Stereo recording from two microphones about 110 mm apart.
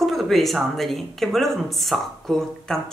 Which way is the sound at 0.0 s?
Centre (ahead or behind).